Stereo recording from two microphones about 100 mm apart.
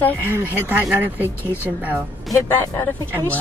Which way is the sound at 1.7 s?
5° right (ahead or behind).